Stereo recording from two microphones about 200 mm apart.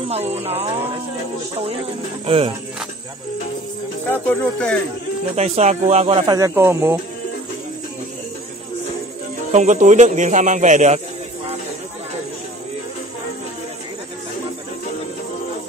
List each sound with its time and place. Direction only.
0.1 s speech: 30° right (ahead or behind)
2.2 s speech: 30° right (ahead or behind)
4.1 s speech: 10° left (ahead or behind)
5.3 s speech: 35° right (ahead or behind); by 7.0 s 10° right (ahead or behind)
9.5 s speech: 35° right (ahead or behind)